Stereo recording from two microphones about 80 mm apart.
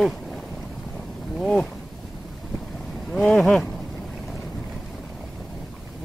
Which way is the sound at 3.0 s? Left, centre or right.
Centre.